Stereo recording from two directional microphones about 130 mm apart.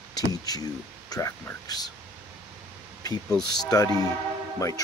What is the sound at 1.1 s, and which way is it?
Speech, 30° left (ahead or behind).